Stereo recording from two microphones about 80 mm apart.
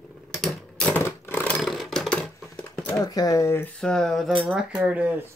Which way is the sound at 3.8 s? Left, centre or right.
Centre.